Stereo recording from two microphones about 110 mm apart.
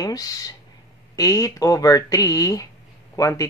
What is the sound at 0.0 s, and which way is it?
Speech, 35° left (ahead or behind).